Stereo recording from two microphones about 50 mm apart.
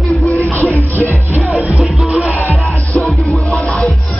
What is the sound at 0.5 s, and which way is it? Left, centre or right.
Music, left.